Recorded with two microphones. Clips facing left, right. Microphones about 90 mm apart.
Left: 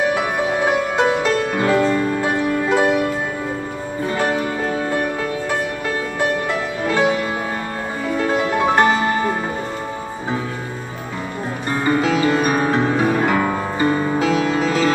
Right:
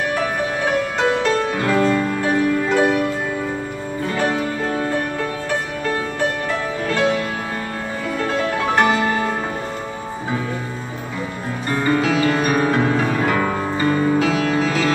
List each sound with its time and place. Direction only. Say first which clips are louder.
1.6 s music: left 2 dB; 15° left (ahead or behind)
4.1 s music: left 1 dB; 10° left (ahead or behind)
8.3 s music: left 3 dB; 15° left (ahead or behind)
11.7 s music: even; 20° left (ahead or behind)